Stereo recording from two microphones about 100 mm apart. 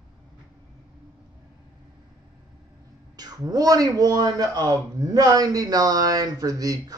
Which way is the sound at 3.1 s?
40° right (ahead or behind).